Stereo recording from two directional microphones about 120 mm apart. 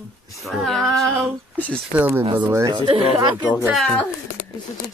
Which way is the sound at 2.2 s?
45° right (ahead or behind).